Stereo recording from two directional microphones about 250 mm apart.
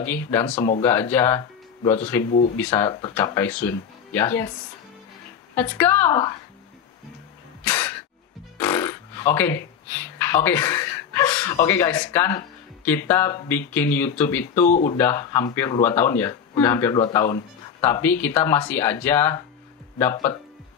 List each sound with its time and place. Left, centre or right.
0.0 s speech: centre
0.8 s speech: centre
5.5 s speech: centre
7.6 s a sound: centre
8.5 s speech: centre
14.7 s speech: left
15.0 s speech: centre